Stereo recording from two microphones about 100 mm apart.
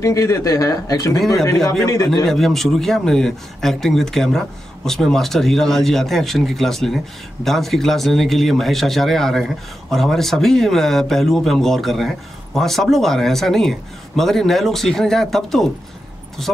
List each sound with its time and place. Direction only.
0.0 s speech: 30° left (ahead or behind)
2.2 s a man's voice: centre (ahead or behind)